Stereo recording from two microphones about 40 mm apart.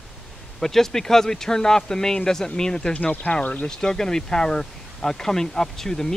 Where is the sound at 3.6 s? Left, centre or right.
Centre.